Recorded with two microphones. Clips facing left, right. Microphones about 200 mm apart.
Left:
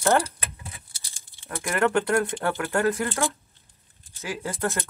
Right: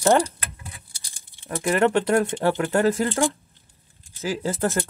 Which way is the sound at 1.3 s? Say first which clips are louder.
Right 6 dB; 20° right (ahead or behind).